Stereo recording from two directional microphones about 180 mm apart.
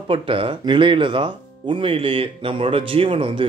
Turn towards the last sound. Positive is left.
turn(degrees=-30)  # may be behind; listen again after turning